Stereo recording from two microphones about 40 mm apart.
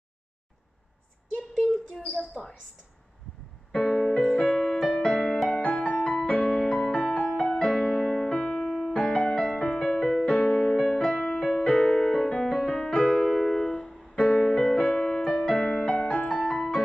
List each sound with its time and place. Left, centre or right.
2.0 s speech: centre
3.8 s music: centre
4.3 s music: centre
4.8 s music: left
5.1 s music: centre
5.6 s music: left
6.3 s music: centre
8.6 s music: centre
8.9 s music: centre
11.3 s music: centre
11.6 s piano: left
12.5 s music: centre
13.1 s music: centre
14.1 s music: centre